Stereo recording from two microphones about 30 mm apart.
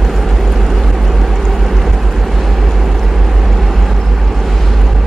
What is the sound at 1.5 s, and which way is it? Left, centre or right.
Vehicle, centre.